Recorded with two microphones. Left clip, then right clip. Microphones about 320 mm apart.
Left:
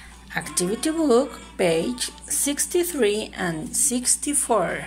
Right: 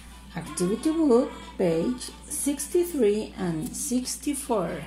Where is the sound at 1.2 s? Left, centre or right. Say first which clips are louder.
Left 3 dB; left.